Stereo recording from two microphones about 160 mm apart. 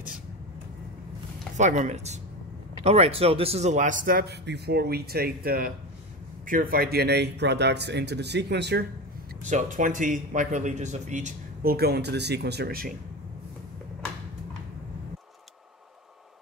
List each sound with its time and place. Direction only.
1.6 s a man's voice: 50° right (ahead or behind); by 8.8 s 90° right
9.5 s a man's voice: 50° right (ahead or behind)
11.6 s speech: 75° right (ahead or behind)